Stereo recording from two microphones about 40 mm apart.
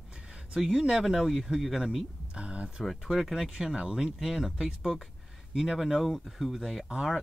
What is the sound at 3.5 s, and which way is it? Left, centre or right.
A woman's voice, centre.